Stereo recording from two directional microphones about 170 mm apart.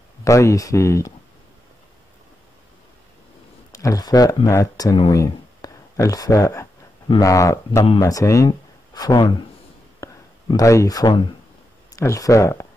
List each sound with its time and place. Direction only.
0.2 s speech: 15° left (ahead or behind)
3.7 s speech: 20° left (ahead or behind)
7.8 s speech: 30° left (ahead or behind)
8.1 s speech: 20° left (ahead or behind)
10.0 s a sound: 20° left (ahead or behind)
10.5 s speech: 20° left (ahead or behind)